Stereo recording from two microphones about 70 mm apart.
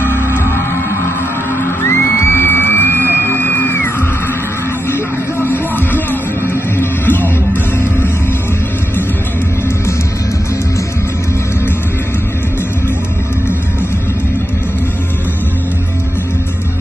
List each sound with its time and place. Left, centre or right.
0.0 s music: left
1.9 s music: left
4.9 s music: left